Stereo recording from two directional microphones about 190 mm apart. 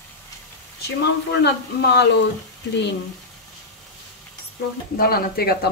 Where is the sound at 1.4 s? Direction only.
60° left (ahead or behind).